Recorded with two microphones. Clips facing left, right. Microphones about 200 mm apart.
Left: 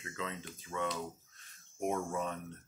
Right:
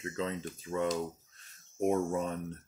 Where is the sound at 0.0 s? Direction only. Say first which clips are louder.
Right 7 dB; 35° right (ahead or behind).